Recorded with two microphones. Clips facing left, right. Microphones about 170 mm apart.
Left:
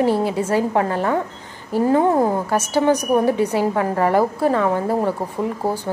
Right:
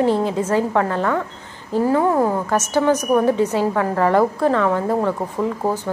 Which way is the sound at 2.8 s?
15° left (ahead or behind).